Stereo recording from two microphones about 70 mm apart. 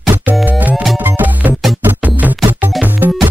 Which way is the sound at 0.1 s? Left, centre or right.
Right.